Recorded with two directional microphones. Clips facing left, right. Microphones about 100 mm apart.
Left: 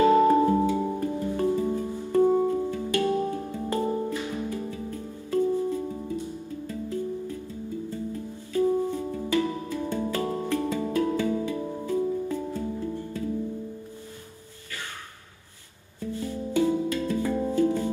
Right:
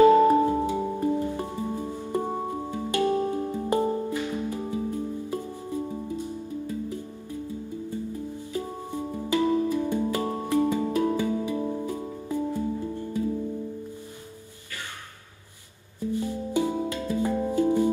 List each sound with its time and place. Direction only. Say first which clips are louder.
0.5 s music: left 2 dB; 20° right (ahead or behind)
16.0 s music: right 3 dB; 15° right (ahead or behind)